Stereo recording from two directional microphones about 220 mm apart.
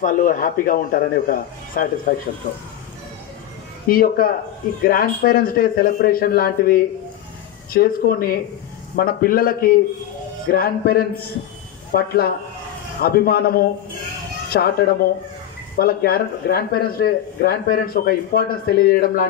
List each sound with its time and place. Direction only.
0.0 s speech: 35° left (ahead or behind)
3.8 s speech: 40° left (ahead or behind)